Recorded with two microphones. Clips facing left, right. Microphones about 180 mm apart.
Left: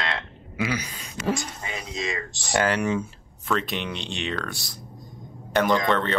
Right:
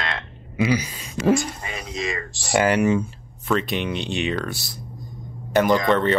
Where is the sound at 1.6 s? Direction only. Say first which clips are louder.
Right 2 dB; 20° left (ahead or behind).